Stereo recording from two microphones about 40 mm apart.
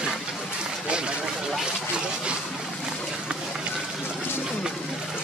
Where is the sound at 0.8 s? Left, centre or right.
Right.